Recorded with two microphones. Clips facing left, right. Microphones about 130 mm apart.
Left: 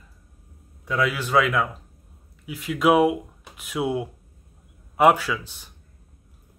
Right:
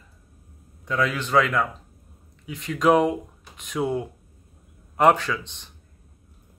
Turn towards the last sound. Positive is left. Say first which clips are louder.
# even
turn(degrees=5)  # may be behind; listen again after turning